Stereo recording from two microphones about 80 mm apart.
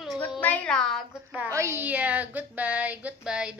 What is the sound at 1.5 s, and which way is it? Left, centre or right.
Speech, right.